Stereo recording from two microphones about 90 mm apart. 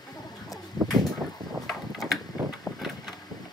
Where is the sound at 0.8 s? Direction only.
50° left (ahead or behind).